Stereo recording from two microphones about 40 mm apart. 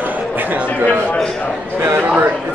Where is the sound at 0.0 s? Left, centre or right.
Right.